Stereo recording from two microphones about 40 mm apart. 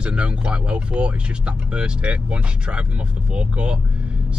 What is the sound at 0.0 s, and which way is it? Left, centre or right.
Speech, right.